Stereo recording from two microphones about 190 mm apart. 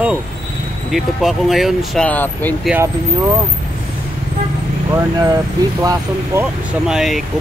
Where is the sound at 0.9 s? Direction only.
Centre (ahead or behind).